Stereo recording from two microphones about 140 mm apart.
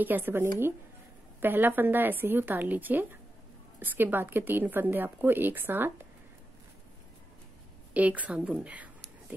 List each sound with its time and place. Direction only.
0.0 s a woman's voice: 15° right (ahead or behind)
7.9 s a woman's voice: 10° right (ahead or behind)